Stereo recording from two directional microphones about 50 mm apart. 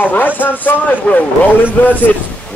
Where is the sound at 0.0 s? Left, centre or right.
Left.